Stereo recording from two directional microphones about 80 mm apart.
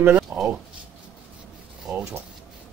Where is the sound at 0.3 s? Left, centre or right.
Right.